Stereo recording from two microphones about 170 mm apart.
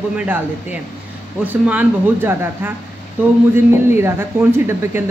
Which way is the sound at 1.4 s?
10° right (ahead or behind).